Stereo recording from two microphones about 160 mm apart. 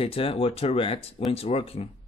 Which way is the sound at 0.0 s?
35° left (ahead or behind).